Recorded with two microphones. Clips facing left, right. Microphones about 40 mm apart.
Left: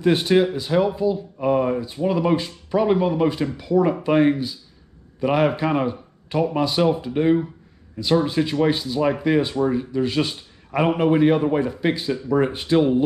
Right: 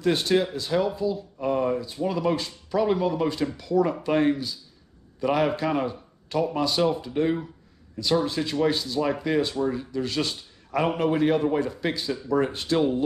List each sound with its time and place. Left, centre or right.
0.0 s speech: centre